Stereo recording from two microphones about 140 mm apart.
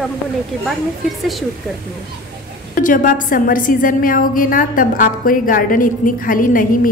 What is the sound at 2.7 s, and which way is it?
A woman's voice, 75° left (ahead or behind).